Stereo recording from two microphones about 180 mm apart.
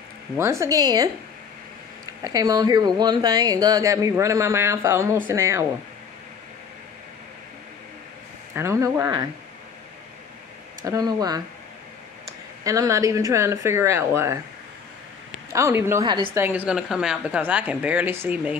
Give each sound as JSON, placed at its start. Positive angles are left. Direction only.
{"t": 0.4, "sound": "speech", "side_deg": -15}
{"t": 2.2, "sound": "speech", "side_deg": -20}
{"t": 8.5, "sound": "speech", "side_deg": -15}
{"t": 10.9, "sound": "speech", "side_deg": -20}
{"t": 12.6, "sound": "speech", "side_deg": -20}
{"t": 15.5, "sound": "speech", "side_deg": -15}